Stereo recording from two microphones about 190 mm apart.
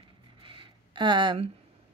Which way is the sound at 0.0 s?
25° right (ahead or behind).